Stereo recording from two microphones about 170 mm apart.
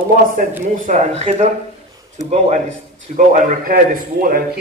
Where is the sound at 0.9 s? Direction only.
45° right (ahead or behind).